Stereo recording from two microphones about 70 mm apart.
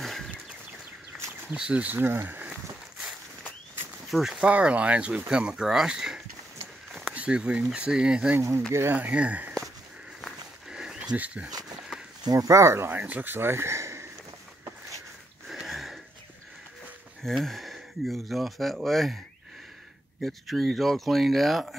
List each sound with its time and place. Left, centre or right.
0.0 s a sound: centre
1.5 s speech: centre
4.1 s speech: centre
4.5 s speech: centre
8.4 s speech: right
8.9 s speech: centre
10.7 s dog: centre
11.1 s speech: centre
12.3 s speech: right
12.9 s speech: right
15.4 s a sound: centre
17.2 s speech: centre
20.2 s speech: centre